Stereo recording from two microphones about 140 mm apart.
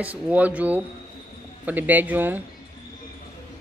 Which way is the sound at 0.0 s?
10° right (ahead or behind).